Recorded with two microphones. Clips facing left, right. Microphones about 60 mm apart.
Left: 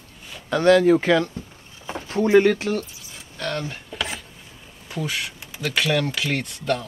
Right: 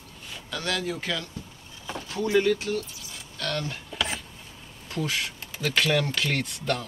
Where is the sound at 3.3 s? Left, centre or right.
Centre.